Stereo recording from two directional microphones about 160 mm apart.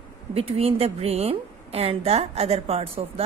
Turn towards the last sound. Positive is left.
turn(degrees=-35)  # may be behind; listen again after turning